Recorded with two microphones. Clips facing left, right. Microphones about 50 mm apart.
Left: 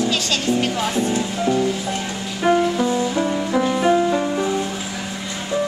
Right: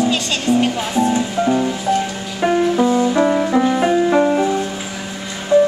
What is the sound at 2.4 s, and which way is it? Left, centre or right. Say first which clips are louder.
Music: even; right.